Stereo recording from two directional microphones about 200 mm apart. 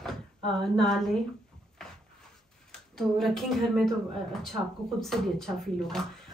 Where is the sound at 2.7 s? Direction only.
5° left (ahead or behind).